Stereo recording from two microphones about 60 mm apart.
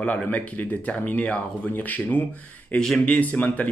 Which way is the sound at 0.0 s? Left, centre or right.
Left.